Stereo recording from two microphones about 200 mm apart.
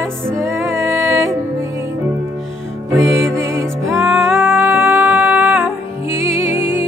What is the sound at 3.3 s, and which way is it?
Music, 15° right (ahead or behind).